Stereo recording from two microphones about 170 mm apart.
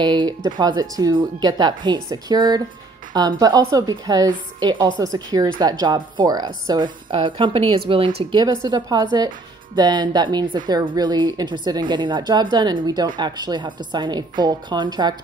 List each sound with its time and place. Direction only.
0.0 s a woman's voice: 25° right (ahead or behind)